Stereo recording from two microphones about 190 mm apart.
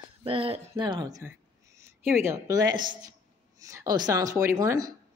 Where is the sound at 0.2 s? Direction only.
30° right (ahead or behind).